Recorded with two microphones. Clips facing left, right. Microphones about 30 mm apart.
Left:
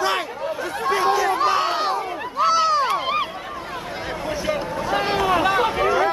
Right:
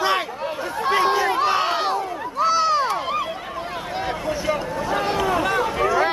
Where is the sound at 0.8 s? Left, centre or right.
Right.